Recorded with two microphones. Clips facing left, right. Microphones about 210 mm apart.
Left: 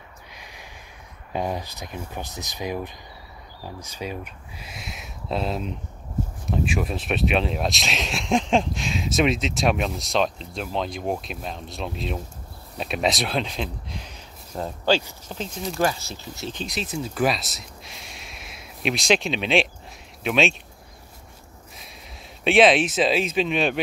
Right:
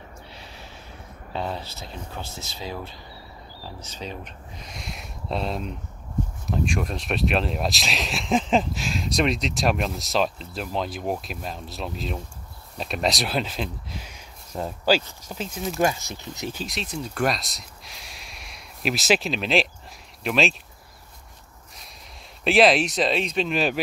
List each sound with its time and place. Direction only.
0.3 s snort: 15° left (ahead or behind)
1.3 s speech: 15° left (ahead or behind); by 15.8 s centre (ahead or behind)
15.8 s speech: 15° right (ahead or behind)
16.5 s speech: centre (ahead or behind)
22.4 s speech: centre (ahead or behind)